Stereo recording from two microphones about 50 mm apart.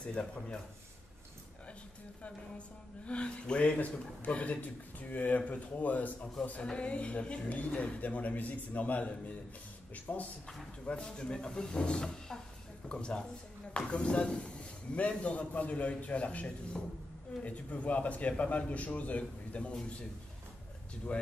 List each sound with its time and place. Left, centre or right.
0.0 s speech: centre
3.1 s speech: left
10.9 s speech: centre